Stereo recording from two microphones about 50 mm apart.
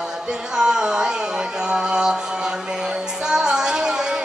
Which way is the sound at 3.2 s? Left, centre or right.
Centre.